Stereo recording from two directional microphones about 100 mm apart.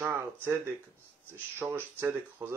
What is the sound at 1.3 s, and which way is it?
Speech, 20° right (ahead or behind).